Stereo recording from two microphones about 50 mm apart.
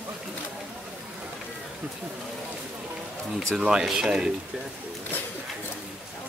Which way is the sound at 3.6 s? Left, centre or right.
Centre.